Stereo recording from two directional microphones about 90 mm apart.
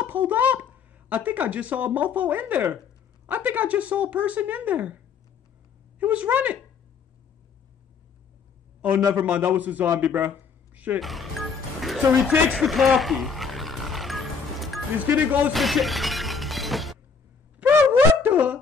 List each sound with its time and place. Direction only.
0.0 s speech: 20° right (ahead or behind)
5.9 s speech: 15° right (ahead or behind)
9.1 s a man's voice: 15° right (ahead or behind)
11.0 s music: centre (ahead or behind)
15.0 s speech: 20° right (ahead or behind)
15.5 s shatter: centre (ahead or behind)
17.6 s a sound: 15° right (ahead or behind)